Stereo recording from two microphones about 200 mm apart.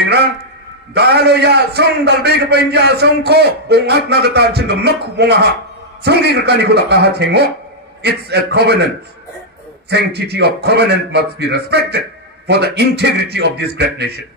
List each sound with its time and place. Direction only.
0.9 s a man's voice: 55° right (ahead or behind)
9.8 s a man's voice: 55° right (ahead or behind)